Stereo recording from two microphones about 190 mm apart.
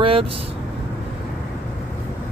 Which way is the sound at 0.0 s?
30° right (ahead or behind).